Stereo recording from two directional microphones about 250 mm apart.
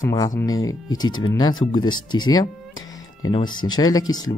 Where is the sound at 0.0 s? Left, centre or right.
Centre.